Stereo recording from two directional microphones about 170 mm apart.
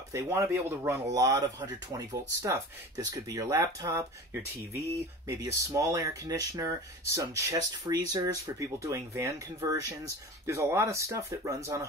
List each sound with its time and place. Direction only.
0.1 s speech: 15° right (ahead or behind)